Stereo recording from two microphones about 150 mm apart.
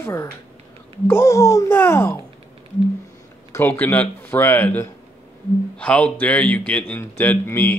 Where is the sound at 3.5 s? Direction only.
15° left (ahead or behind).